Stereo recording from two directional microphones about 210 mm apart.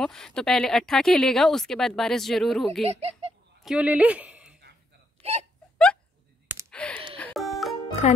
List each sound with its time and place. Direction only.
0.0 s speech: 5° left (ahead or behind)
2.8 s speech: 30° right (ahead or behind)
3.6 s speech: 5° right (ahead or behind)
5.2 s speech: 30° right (ahead or behind)
6.7 s gasp: 5° left (ahead or behind)
7.2 s music: 5° left (ahead or behind)
8.0 s speech: 30° left (ahead or behind)